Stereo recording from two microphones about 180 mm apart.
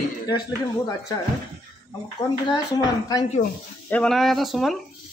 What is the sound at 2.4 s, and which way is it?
Speech, 20° left (ahead or behind).